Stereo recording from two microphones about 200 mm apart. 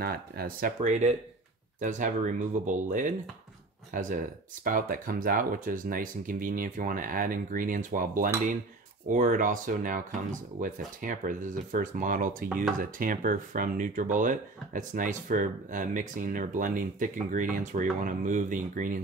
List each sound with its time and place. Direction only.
0.0 s speech: 50° right (ahead or behind)